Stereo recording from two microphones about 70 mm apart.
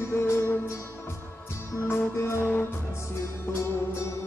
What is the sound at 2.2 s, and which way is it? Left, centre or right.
Music, left.